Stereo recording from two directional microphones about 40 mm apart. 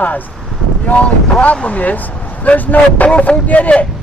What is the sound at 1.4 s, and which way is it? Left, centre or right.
Speech, left.